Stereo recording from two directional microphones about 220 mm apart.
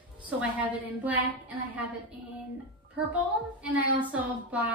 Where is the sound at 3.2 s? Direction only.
5° right (ahead or behind).